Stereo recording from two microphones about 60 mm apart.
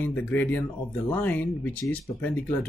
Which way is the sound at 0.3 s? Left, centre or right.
Left.